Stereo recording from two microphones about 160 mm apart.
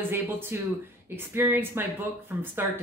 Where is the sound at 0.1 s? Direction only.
15° right (ahead or behind).